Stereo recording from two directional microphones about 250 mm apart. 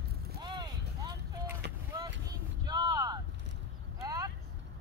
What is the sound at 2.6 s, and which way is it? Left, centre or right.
Vehicle, centre.